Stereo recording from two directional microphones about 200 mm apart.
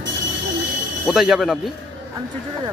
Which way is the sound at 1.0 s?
Centre (ahead or behind).